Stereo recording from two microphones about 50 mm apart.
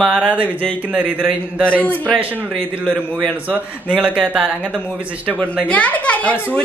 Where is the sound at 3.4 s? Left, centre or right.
Right.